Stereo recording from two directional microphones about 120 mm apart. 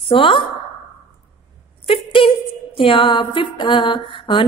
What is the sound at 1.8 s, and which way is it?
Speech, 50° left (ahead or behind).